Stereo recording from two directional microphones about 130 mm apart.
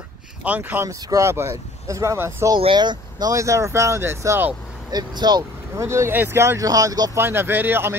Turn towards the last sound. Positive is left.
turn(degrees=-15)  # may be behind; listen again after turning